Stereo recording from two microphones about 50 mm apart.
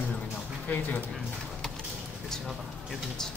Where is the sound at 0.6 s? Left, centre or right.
Left.